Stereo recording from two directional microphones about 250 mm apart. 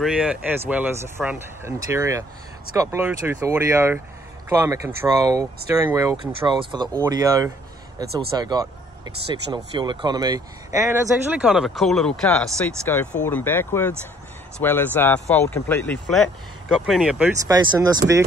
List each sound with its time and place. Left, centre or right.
0.0 s speech: centre
17.5 s speech: centre